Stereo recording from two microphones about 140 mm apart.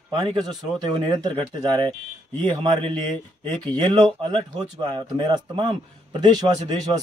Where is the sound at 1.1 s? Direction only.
30° right (ahead or behind).